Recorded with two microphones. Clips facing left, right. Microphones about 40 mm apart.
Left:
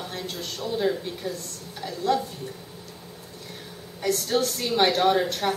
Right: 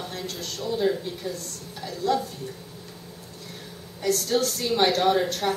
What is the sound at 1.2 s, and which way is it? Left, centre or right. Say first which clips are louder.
Speech: even; left.